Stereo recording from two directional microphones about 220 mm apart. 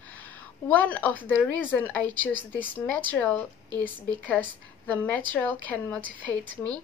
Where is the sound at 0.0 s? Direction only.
5° left (ahead or behind).